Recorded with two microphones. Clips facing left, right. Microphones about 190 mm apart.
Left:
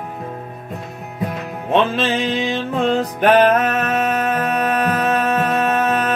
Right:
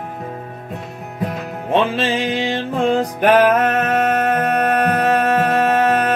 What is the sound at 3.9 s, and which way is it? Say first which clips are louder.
Music: right 2 dB; 60° right (ahead or behind).